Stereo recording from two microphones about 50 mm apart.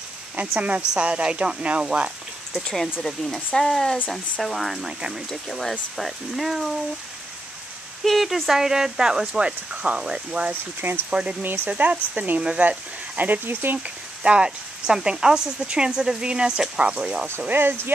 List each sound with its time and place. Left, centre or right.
0.6 s a woman's voice: right
2.6 s speech: centre
4.8 s speech: centre
5.3 s speech: centre
8.0 s speech: centre
10.6 s speech: right
11.1 s a woman's voice: right
11.4 s speech: right
11.7 s a woman's voice: right
13.5 s speech: right
14.2 s speech: centre
17.5 s speech: right